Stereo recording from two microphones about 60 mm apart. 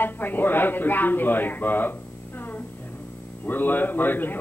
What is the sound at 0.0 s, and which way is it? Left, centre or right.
A man's voice, left.